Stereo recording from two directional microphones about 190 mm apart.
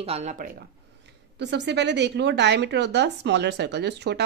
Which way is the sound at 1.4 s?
65° right (ahead or behind).